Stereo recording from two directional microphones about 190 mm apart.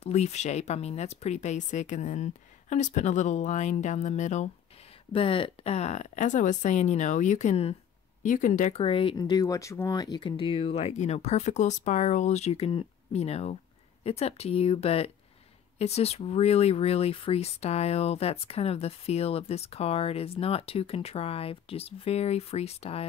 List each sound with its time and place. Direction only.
0.0 s speech: 35° left (ahead or behind)